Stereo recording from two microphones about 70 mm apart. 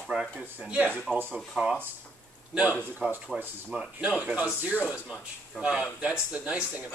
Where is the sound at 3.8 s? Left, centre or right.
Centre.